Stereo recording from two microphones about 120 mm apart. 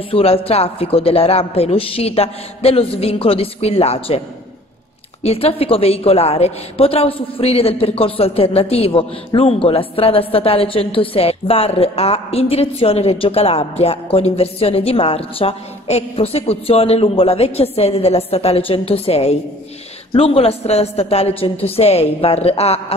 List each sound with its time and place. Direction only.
0.1 s a man's voice: 55° left (ahead or behind)
5.2 s a woman's voice: 55° left (ahead or behind)